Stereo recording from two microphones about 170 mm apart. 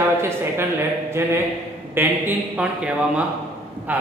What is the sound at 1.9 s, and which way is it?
A man's voice, 10° right (ahead or behind).